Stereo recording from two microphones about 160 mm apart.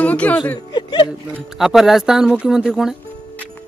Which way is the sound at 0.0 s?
10° left (ahead or behind).